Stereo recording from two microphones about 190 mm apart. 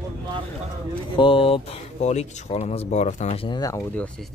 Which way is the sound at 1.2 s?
30° left (ahead or behind).